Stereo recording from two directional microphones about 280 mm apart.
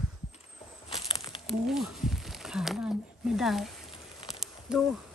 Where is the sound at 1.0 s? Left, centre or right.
Centre.